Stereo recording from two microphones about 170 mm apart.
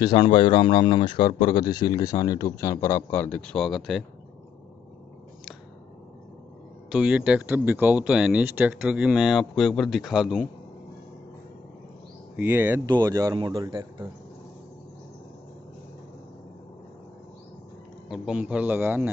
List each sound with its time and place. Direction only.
0.0 s speech: 25° left (ahead or behind); by 4.0 s centre (ahead or behind)
6.9 s speech: 5° right (ahead or behind)
12.4 s speech: 10° right (ahead or behind)
18.0 s speech: 5° right (ahead or behind)